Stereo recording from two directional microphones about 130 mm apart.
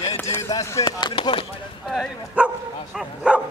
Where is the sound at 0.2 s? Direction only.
20° left (ahead or behind).